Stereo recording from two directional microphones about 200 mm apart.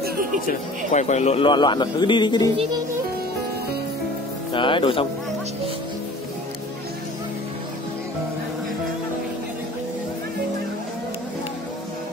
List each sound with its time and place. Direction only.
0.5 s speech: 35° left (ahead or behind)
2.5 s music: 25° right (ahead or behind)
4.5 s speech: 25° left (ahead or behind)